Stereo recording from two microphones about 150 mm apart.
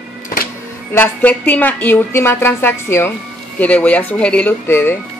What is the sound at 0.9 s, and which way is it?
A woman's voice, 10° left (ahead or behind).